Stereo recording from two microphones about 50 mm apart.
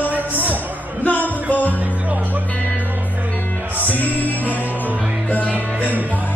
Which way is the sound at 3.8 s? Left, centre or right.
Left.